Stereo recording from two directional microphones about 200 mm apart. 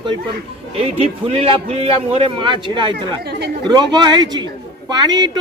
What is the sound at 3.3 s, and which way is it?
Speech, 55° right (ahead or behind).